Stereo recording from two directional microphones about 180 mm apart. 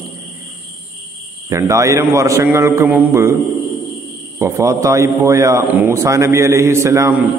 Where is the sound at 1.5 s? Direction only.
15° right (ahead or behind).